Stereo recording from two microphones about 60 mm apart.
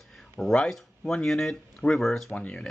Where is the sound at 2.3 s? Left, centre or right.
Left.